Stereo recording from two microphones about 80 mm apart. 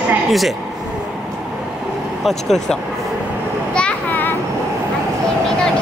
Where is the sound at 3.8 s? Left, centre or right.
Centre.